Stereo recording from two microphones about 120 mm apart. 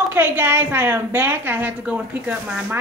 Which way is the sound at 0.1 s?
20° right (ahead or behind).